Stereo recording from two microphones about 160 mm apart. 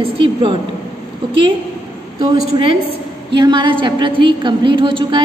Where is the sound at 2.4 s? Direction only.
40° right (ahead or behind).